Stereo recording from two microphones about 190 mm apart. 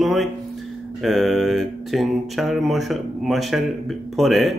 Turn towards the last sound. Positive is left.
turn(degrees=0)  # may be behind; listen again after turning